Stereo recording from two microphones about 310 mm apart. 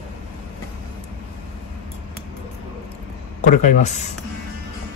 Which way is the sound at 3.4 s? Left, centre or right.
Left.